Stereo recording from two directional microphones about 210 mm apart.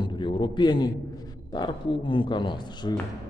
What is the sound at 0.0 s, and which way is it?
A man's voice, 20° left (ahead or behind).